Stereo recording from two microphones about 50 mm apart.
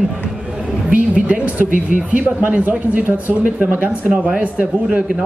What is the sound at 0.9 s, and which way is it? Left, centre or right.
A man's voice, right.